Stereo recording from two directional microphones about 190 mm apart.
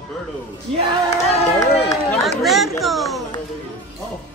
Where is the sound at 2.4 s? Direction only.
Centre (ahead or behind).